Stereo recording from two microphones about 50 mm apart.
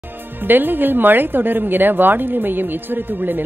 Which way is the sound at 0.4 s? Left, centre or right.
Right.